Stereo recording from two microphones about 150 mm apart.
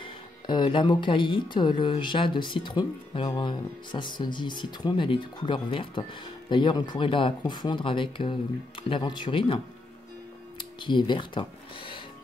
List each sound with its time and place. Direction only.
0.0 s speech: 30° left (ahead or behind)
10.6 s speech: 30° left (ahead or behind)